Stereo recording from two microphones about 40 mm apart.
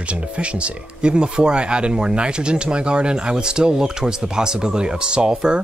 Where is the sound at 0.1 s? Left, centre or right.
Right.